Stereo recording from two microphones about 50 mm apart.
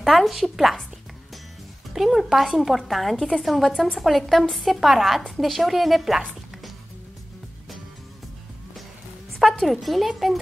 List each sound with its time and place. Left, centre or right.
0.0 s a woman's voice: centre
2.0 s a woman's voice: centre
9.4 s a sound: centre
9.8 s a woman's voice: centre